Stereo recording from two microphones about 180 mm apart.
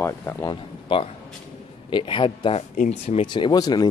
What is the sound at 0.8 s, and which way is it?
Speech, 30° left (ahead or behind).